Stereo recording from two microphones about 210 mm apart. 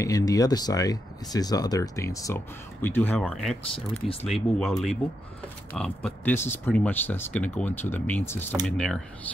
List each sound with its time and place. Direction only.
0.0 s speech: 15° left (ahead or behind)
3.9 s speech: 30° left (ahead or behind)
4.3 s speech: centre (ahead or behind)